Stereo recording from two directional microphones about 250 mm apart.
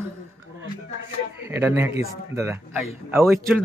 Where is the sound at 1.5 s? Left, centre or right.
Centre.